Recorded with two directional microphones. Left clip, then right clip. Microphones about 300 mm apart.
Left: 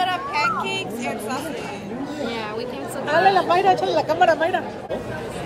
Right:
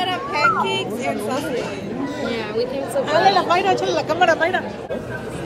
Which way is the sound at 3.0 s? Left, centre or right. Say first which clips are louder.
Right 1 dB; left.